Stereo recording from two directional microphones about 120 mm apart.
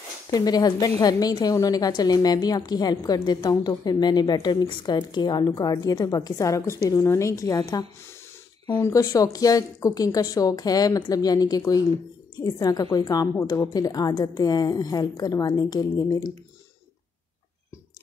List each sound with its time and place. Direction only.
0.3 s a woman's voice: 35° left (ahead or behind)
8.8 s a woman's voice: 30° left (ahead or behind)